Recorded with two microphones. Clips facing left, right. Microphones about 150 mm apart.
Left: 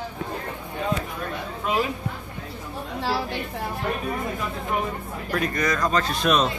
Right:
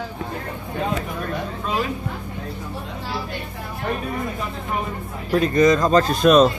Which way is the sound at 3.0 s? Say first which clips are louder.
Left 5 dB; 85° left.